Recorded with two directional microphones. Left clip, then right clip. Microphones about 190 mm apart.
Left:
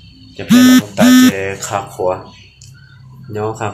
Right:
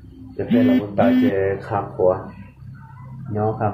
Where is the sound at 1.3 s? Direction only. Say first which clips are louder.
Left 2 dB; 15° left (ahead or behind).